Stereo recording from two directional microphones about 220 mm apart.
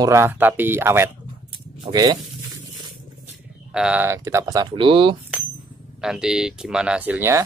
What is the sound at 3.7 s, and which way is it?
Speech, 5° right (ahead or behind).